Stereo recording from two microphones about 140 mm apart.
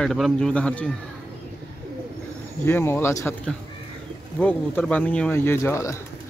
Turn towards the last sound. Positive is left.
turn(degrees=20)  # may be behind; listen again after turning